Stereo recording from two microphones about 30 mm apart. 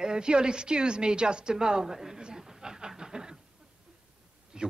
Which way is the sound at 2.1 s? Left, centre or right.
Right.